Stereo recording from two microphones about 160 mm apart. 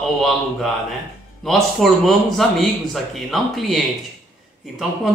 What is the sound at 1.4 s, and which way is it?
Speech, centre (ahead or behind).